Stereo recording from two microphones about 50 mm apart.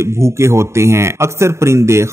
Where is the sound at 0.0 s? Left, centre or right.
Right.